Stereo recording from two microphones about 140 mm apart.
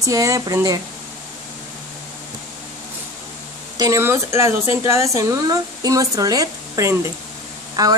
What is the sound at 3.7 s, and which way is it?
Speech, 25° right (ahead or behind).